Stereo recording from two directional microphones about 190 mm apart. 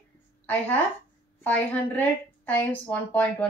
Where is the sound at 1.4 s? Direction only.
10° left (ahead or behind).